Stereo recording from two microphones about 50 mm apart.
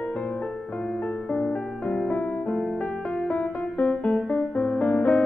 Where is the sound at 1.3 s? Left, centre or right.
Centre.